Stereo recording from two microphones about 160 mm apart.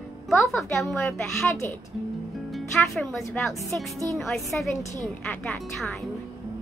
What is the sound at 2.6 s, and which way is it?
A woman's voice, centre (ahead or behind).